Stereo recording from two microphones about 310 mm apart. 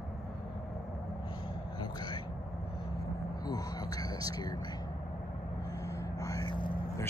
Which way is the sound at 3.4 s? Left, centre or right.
Centre.